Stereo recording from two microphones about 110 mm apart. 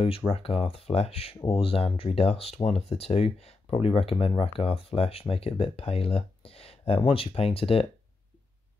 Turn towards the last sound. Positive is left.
turn(degrees=60)  # may be behind; listen again after turning